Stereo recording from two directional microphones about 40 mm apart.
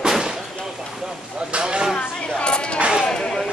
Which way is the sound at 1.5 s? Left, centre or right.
Right.